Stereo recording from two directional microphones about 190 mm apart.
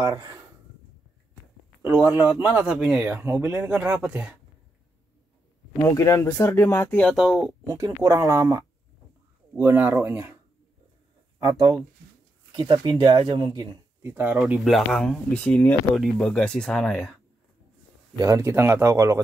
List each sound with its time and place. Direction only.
0.0 s speech: 20° right (ahead or behind)
1.8 s speech: 10° right (ahead or behind)
5.9 s speech: 15° left (ahead or behind); by 7.5 s 5° right (ahead or behind)
7.6 s speech: 15° right (ahead or behind)
11.3 s speech: 20° right (ahead or behind); by 17.2 s 5° left (ahead or behind)
18.2 s speech: 15° right (ahead or behind)